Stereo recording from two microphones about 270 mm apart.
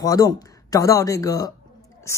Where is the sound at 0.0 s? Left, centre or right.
Centre.